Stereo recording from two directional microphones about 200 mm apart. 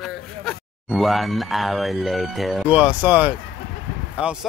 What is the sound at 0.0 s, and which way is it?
A man's voice, centre (ahead or behind).